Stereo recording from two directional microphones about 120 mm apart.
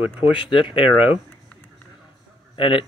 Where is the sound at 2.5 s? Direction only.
45° left (ahead or behind).